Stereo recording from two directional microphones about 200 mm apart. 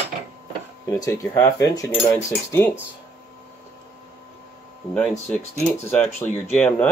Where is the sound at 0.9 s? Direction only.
15° left (ahead or behind).